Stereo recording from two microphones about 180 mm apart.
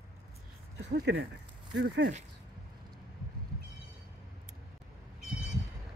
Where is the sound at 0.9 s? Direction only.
75° right (ahead or behind).